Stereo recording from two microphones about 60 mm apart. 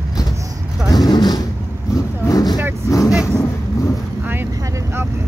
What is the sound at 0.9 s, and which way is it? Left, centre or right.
Speech, left.